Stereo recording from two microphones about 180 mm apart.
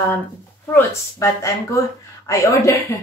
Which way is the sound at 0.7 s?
15° left (ahead or behind).